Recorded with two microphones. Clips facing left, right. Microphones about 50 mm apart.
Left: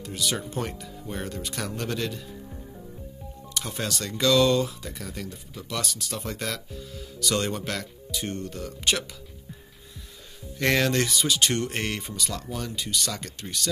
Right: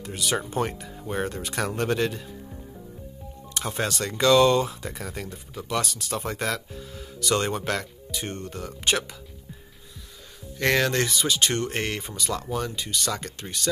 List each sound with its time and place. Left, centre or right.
0.0 s speech: right
3.7 s speech: right
10.6 s speech: centre